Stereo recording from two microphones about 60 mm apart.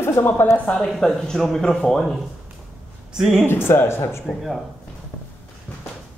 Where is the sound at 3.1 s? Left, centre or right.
Centre.